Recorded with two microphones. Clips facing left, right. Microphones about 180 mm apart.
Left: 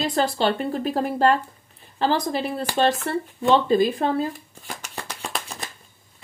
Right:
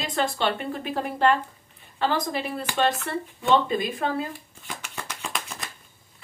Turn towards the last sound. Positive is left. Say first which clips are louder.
# left 2 dB
turn(degrees=35)  # may be behind; listen again after turning